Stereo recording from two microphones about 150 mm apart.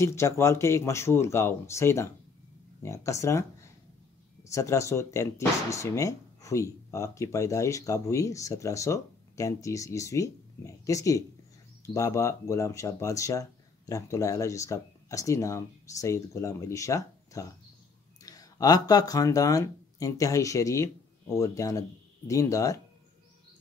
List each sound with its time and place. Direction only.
0.0 s speech: 20° left (ahead or behind)